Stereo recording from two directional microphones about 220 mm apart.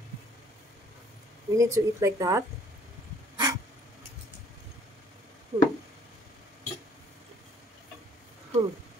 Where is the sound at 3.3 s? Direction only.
15° right (ahead or behind).